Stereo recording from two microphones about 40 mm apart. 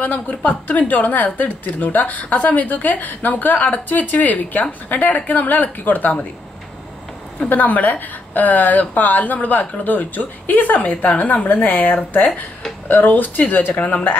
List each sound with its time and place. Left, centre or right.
0.0 s a woman's voice: left
7.4 s a woman's voice: left
13.7 s speech: left